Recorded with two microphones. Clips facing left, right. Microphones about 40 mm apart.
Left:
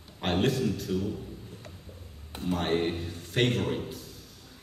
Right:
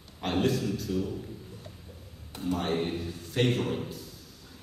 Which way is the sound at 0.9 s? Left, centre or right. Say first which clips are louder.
Even; left.